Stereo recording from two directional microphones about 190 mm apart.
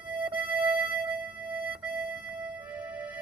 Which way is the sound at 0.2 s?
10° right (ahead or behind).